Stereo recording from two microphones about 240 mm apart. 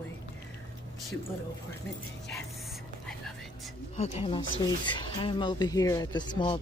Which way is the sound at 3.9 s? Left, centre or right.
Left.